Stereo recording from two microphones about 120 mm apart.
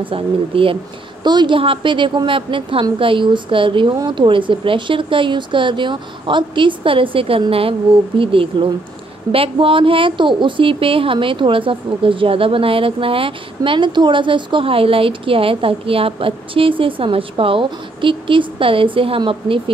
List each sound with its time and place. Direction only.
0.0 s a woman's voice: 50° right (ahead or behind)